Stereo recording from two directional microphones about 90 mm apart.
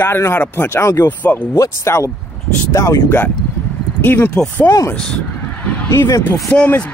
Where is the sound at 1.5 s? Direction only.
35° left (ahead or behind).